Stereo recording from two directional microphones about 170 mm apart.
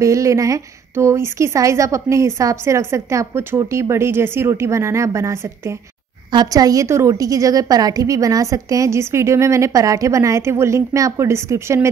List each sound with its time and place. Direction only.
0.0 s a woman's voice: 20° right (ahead or behind)